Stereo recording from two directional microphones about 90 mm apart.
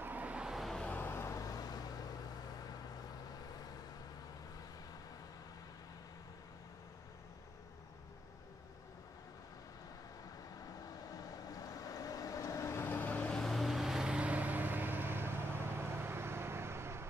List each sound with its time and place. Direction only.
0.0 s vehicle: 20° right (ahead or behind); by 0.8 s centre (ahead or behind)
0.8 s vehicle: 25° left (ahead or behind); by 3.7 s 45° left (ahead or behind)
10.9 s vehicle: 40° left (ahead or behind); by 13.3 s 20° left (ahead or behind)
13.3 s vehicle: centre (ahead or behind); by 17.0 s 30° right (ahead or behind)